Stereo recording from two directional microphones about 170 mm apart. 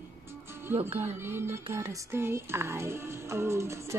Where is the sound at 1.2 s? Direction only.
15° right (ahead or behind).